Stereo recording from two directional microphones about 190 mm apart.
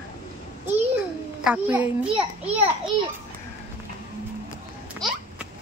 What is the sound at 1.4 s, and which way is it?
Speech, 10° right (ahead or behind).